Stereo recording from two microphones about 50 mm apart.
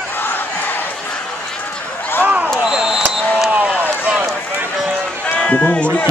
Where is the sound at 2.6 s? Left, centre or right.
Centre.